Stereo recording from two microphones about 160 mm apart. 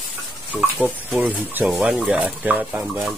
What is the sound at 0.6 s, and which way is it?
Speech, 10° right (ahead or behind).